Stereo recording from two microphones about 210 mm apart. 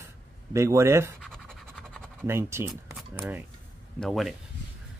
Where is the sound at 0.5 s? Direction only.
15° right (ahead or behind).